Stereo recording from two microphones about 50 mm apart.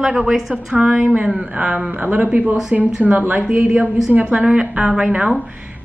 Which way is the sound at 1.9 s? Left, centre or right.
Right.